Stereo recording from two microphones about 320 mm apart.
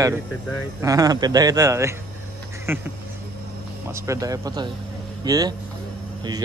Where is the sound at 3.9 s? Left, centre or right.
Centre.